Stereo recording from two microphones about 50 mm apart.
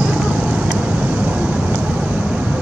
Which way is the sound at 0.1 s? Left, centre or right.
Centre.